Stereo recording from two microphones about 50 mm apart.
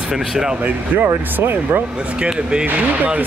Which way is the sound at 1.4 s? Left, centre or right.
Right.